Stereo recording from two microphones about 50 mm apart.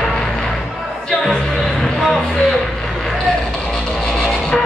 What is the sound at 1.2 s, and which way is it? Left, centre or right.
Music, centre.